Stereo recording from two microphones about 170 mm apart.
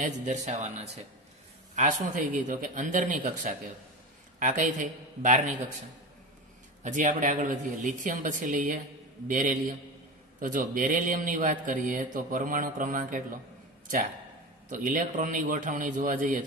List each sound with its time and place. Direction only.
0.0 s a man's voice: 45° right (ahead or behind)
1.8 s a man's voice: 50° right (ahead or behind)
6.8 s a man's voice: 45° right (ahead or behind)
14.7 s a man's voice: 50° right (ahead or behind)